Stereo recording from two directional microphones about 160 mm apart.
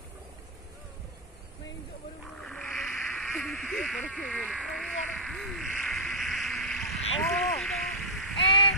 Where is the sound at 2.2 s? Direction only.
5° left (ahead or behind).